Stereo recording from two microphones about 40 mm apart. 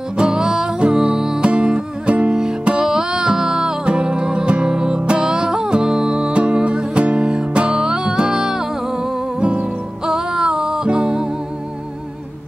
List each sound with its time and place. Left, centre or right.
0.2 s music: centre
2.8 s music: centre
3.8 s music: right
9.4 s music: right
10.0 s music: centre